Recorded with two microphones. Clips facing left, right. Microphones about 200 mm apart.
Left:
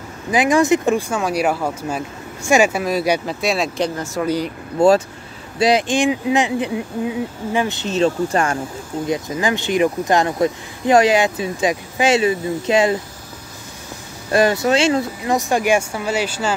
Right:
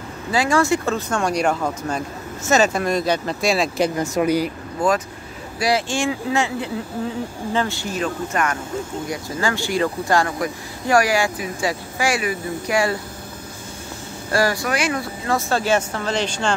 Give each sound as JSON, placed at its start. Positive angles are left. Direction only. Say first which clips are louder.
{"t": 0.3, "sound": "speech", "louder": "left 4 dB", "side_deg": 20}
{"t": 4.0, "sound": "speech", "louder": "right 2 dB", "side_deg": -15}
{"t": 4.7, "sound": "speech", "louder": "left 7 dB", "side_deg": 30}
{"t": 14.3, "sound": "speech", "louder": "left 5 dB", "side_deg": 20}